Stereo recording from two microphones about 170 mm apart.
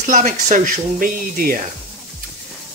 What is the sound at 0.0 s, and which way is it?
Speech, 45° right (ahead or behind).